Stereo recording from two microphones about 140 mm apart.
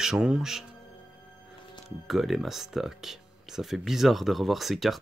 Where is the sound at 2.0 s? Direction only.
Centre (ahead or behind).